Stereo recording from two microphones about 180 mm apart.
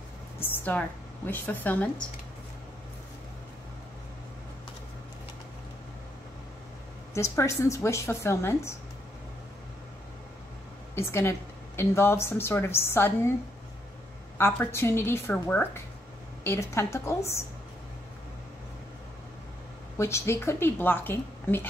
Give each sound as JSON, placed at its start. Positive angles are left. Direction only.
{"t": 0.4, "sound": "speech", "side_deg": 10}
{"t": 7.2, "sound": "a woman's voice", "side_deg": 15}
{"t": 11.0, "sound": "a woman's voice", "side_deg": 15}
{"t": 14.4, "sound": "a woman's voice", "side_deg": 15}
{"t": 20.0, "sound": "a woman's voice", "side_deg": 15}